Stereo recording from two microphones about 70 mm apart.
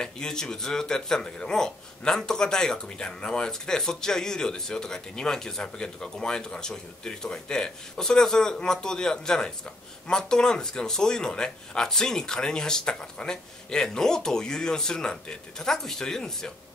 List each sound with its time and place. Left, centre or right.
0.0 s speech: centre